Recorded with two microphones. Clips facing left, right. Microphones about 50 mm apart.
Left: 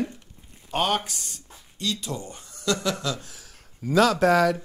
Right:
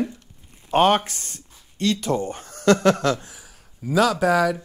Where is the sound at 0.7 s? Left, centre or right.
Right.